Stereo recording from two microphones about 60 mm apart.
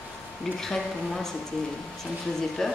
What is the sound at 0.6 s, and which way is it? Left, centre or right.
Speech, centre.